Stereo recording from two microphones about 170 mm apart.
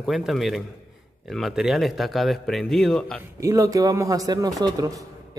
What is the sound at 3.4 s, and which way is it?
A man's voice, 20° right (ahead or behind).